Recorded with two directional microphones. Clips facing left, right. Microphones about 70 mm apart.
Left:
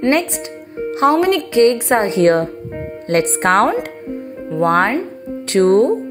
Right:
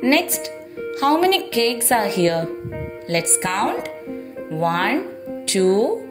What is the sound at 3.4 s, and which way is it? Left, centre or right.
Speech, left.